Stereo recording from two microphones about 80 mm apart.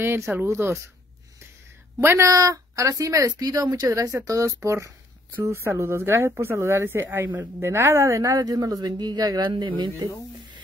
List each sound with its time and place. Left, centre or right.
0.0 s speech: right
2.0 s speech: right